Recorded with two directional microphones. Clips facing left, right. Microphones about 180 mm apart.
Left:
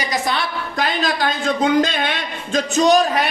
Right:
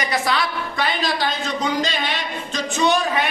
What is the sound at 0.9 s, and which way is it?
Speech, 50° left (ahead or behind).